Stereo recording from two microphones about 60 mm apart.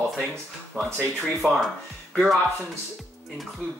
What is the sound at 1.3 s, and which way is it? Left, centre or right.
Speech, centre.